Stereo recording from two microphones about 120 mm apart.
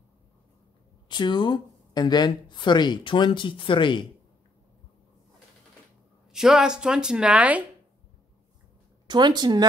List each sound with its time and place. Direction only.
1.0 s speech: 40° left (ahead or behind)
6.3 s speech: 5° right (ahead or behind)
9.0 s speech: 40° right (ahead or behind)